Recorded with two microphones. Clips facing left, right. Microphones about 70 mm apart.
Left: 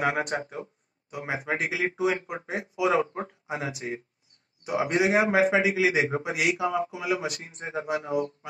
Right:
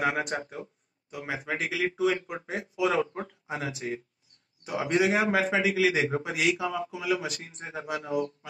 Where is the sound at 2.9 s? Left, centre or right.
Left; by 6.6 s centre.